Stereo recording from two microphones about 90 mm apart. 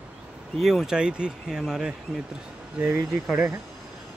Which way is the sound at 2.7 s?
25° right (ahead or behind).